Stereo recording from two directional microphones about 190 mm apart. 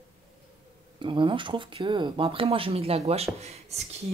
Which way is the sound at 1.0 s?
25° right (ahead or behind).